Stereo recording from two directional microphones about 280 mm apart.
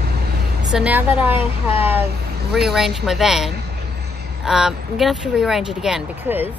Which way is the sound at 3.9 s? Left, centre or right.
Right.